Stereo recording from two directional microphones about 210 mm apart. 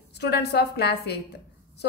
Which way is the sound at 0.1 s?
50° left (ahead or behind).